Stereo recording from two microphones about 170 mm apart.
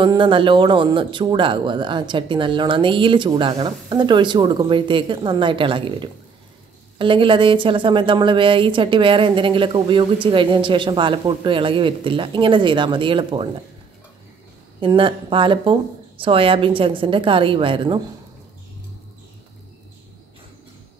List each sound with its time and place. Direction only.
0.0 s a woman's voice: 30° right (ahead or behind)
14.8 s speech: 30° right (ahead or behind)